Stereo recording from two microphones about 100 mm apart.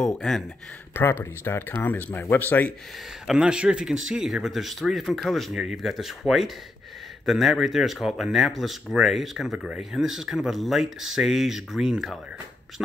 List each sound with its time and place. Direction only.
0.0 s speech: 5° left (ahead or behind)
1.2 s speech: 25° left (ahead or behind)
3.3 s speech: 10° right (ahead or behind)